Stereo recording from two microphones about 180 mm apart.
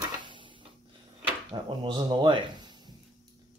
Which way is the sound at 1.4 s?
25° right (ahead or behind).